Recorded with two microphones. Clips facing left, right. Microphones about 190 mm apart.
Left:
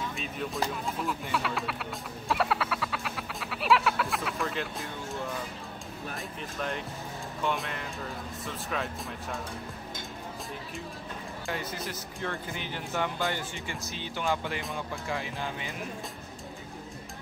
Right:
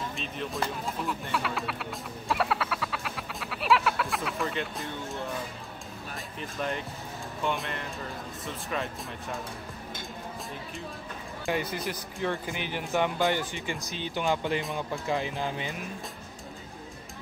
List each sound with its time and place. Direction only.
0.1 s speech: 5° left (ahead or behind)
7.4 s speech: centre (ahead or behind)
11.4 s speech: 15° right (ahead or behind)